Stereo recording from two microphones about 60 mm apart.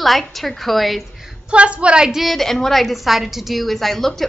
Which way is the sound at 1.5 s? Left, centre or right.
Centre.